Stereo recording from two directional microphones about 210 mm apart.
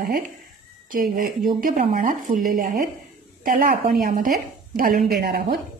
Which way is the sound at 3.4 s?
45° right (ahead or behind).